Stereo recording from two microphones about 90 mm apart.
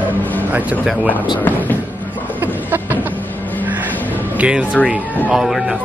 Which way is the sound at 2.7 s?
20° right (ahead or behind).